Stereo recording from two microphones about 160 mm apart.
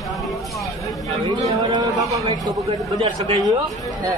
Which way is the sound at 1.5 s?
20° right (ahead or behind).